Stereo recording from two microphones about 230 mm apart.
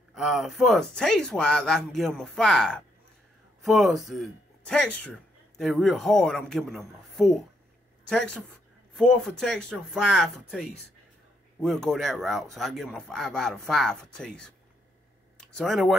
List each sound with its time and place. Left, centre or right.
0.1 s a woman's voice: centre
15.5 s speech: centre